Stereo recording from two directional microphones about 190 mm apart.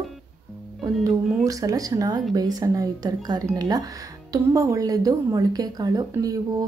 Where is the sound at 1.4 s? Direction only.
20° right (ahead or behind).